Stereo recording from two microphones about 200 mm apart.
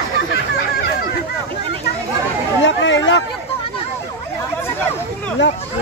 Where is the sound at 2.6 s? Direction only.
65° left (ahead or behind).